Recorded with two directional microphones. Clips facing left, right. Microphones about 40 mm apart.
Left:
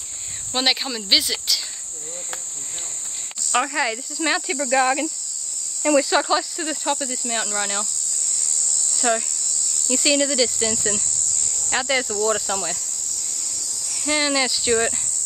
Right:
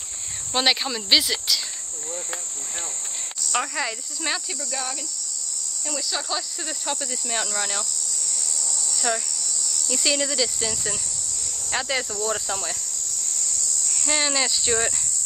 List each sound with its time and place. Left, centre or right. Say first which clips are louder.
0.5 s cricket: even; centre
3.5 s speech: left 5 dB; centre
4.5 s speech: left 12 dB; left
6.2 s speech: left 7 dB; left
8.9 s cricket: left 5 dB; left
9.9 s speech: left 5 dB; centre
12.4 s cricket: left 3 dB; centre
13.8 s speech: left 3 dB; centre